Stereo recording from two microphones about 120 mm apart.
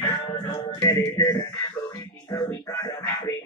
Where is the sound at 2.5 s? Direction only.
20° left (ahead or behind).